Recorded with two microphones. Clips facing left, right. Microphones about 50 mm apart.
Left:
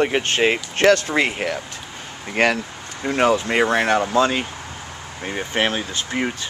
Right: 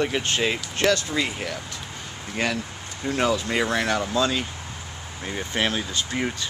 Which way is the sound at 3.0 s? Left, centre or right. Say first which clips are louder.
Left 5 dB; left.